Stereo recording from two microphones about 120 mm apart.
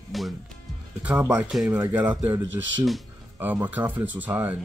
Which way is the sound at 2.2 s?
30° right (ahead or behind).